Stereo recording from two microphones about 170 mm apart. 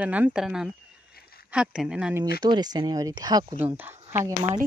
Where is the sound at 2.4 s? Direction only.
25° right (ahead or behind).